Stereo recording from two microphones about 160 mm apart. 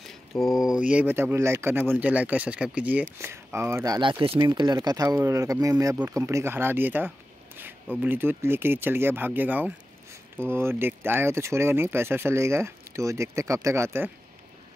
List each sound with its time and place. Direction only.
0.0 s speech: centre (ahead or behind); by 14.1 s 15° right (ahead or behind)